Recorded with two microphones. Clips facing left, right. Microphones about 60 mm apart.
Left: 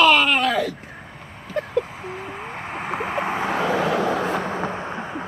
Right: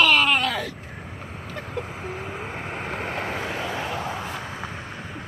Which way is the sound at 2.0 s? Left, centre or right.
Centre.